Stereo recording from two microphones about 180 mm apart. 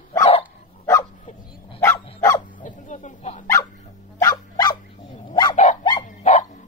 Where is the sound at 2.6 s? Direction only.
45° left (ahead or behind).